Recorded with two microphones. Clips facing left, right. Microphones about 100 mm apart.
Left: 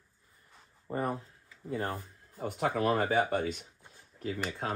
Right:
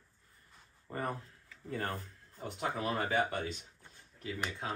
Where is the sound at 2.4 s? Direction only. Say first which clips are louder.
Left 7 dB; 55° left (ahead or behind).